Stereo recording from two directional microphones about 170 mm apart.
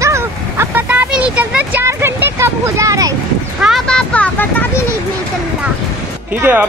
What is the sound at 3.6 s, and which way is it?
Speech, centre (ahead or behind).